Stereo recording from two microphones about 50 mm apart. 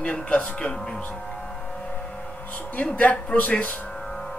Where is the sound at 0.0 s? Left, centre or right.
Left.